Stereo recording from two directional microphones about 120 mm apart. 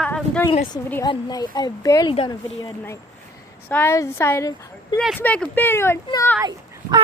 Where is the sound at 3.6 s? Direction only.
15° left (ahead or behind).